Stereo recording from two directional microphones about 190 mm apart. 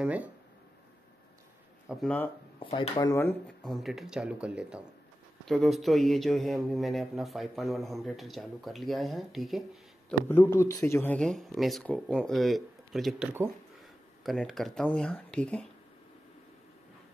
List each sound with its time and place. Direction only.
0.0 s speech: 10° right (ahead or behind)
1.9 s a man's voice: 5° left (ahead or behind)
2.6 s speech: 30° left (ahead or behind)
3.1 s speech: 15° left (ahead or behind)
3.6 s a man's voice: centre (ahead or behind)
10.2 s a man's voice: 10° left (ahead or behind)